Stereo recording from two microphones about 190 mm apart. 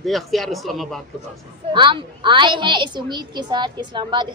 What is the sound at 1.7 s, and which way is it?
A woman's voice, 25° right (ahead or behind).